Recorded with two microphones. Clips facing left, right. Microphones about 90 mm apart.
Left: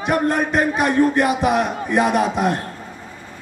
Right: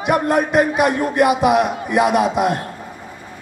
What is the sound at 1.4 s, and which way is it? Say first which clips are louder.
Speech: right 3 dB; 35° left (ahead or behind).